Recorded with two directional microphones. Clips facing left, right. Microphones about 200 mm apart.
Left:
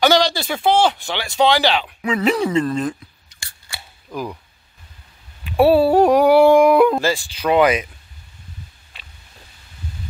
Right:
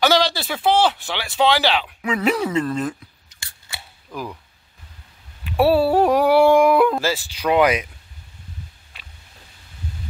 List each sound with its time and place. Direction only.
0.0 s speech: 5° right (ahead or behind)
3.3 s scissors: 20° right (ahead or behind)
5.4 s speech: centre (ahead or behind)